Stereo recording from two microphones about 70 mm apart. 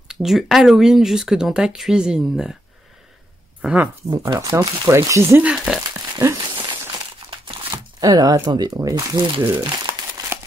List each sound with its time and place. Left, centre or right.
0.1 s speech: centre
3.6 s speech: centre
4.4 s speech: right
5.4 s speech: centre
6.2 s a sound: right
7.7 s a sound: right
8.5 s speech: right
9.1 s speech: right
10.3 s a sound: right